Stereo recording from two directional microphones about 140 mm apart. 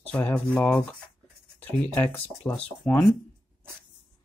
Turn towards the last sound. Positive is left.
turn(degrees=5)  # may be behind; listen again after turning